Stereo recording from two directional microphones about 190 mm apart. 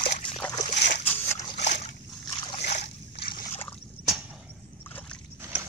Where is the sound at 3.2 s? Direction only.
50° left (ahead or behind).